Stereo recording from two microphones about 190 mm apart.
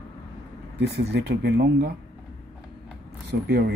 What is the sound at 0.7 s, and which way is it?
Speech, 60° right (ahead or behind).